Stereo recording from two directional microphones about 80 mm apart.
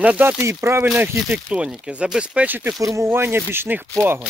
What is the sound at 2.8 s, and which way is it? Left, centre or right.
Speech, right.